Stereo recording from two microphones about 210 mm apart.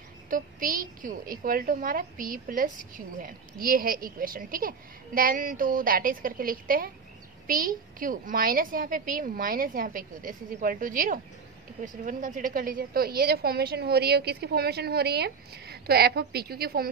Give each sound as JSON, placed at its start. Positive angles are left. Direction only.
{"t": 0.3, "sound": "a woman's voice", "side_deg": -40}